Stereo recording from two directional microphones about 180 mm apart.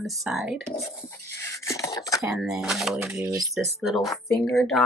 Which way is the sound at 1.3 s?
15° left (ahead or behind).